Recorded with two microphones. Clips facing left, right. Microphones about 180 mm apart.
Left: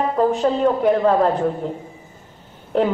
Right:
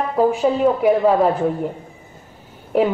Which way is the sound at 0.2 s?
10° right (ahead or behind).